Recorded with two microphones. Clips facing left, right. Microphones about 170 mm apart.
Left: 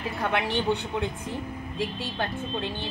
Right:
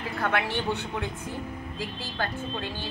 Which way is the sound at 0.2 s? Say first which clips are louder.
Left 1 dB; 20° left (ahead or behind).